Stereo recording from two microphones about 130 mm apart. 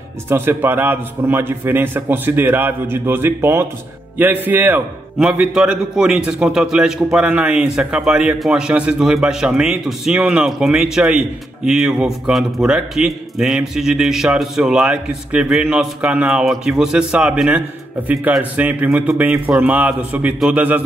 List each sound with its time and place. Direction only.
0.3 s a man's voice: 15° right (ahead or behind)